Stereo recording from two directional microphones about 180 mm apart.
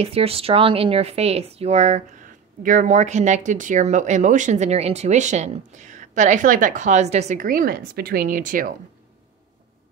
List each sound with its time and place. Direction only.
0.0 s speech: 35° right (ahead or behind); by 8.7 s 50° right (ahead or behind)